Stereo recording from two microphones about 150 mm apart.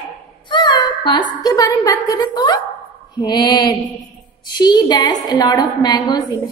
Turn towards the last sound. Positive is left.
turn(degrees=30)  # may be behind; listen again after turning